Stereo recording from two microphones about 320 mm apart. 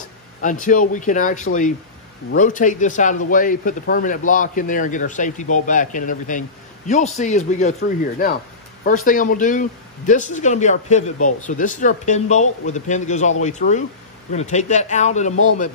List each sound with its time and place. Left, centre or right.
0.4 s speech: left